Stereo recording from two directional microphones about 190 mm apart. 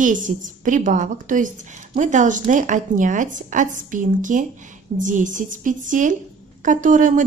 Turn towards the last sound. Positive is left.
turn(degrees=-40)  # may be behind; listen again after turning